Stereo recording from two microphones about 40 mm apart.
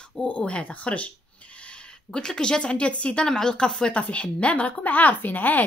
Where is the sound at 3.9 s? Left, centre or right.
Left.